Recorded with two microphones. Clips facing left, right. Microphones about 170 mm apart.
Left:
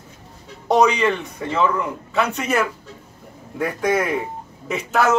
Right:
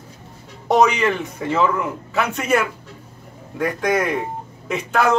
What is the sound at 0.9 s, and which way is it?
A man's voice, 5° right (ahead or behind).